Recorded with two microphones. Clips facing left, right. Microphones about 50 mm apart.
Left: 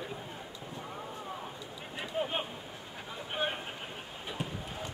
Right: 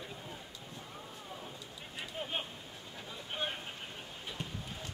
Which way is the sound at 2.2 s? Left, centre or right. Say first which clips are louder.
Left 4 dB; centre.